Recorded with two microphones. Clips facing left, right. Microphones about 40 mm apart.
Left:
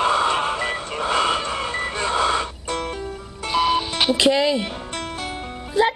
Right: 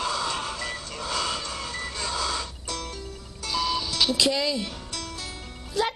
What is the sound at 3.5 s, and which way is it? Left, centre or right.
Music, left.